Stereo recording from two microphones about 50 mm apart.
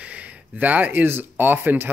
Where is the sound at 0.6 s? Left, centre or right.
Right.